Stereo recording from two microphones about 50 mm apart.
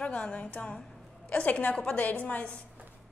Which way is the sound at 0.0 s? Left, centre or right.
Left.